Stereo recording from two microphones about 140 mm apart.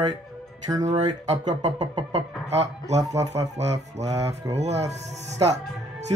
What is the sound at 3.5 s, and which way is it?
Speech, 55° right (ahead or behind).